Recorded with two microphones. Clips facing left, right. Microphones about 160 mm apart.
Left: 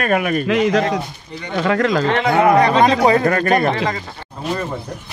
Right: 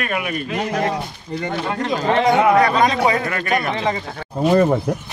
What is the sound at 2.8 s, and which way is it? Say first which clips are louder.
Speech: left 4 dB; 40° left (ahead or behind).